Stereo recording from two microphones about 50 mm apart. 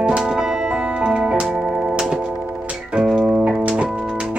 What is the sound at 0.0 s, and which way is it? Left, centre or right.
Music, centre.